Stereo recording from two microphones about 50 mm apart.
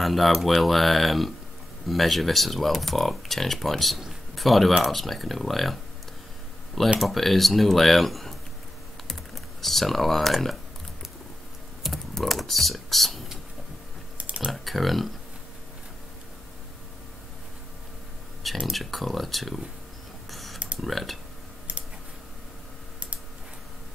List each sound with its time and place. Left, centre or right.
0.0 s speech: centre
7.0 s speech: centre
9.0 s typing: centre
11.8 s computer keyboard: centre
14.1 s typing: right
14.5 s speech: centre
18.7 s speech: centre
20.2 s a sound: centre
20.5 s tick-tock: right
20.8 s speech: centre